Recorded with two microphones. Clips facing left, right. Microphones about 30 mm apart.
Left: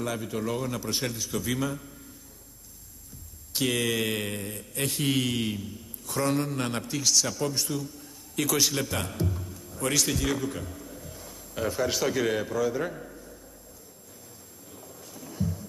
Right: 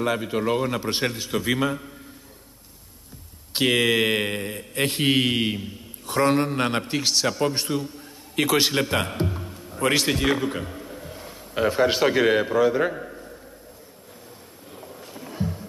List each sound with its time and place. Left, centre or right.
0.0 s a man's voice: right
3.5 s mantra: right
14.7 s boat: right